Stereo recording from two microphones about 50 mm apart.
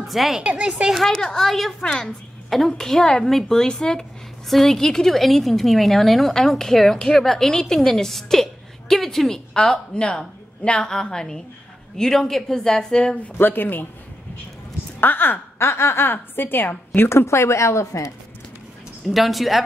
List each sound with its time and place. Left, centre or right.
0.1 s speech: centre
0.4 s speech: right
1.0 s a woman's voice: centre
13.4 s speech: left
15.0 s a woman's voice: left
17.1 s a woman's voice: left
19.0 s speech: centre